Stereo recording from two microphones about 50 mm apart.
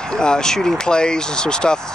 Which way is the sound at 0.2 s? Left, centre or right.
Centre.